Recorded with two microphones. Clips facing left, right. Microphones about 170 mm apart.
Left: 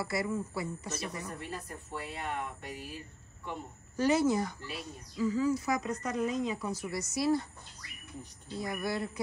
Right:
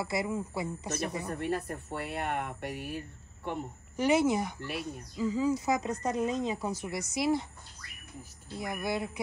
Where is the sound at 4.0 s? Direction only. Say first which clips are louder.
Right 1 dB; 20° right (ahead or behind).